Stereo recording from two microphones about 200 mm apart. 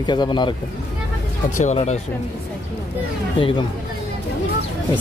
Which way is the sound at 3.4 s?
25° left (ahead or behind).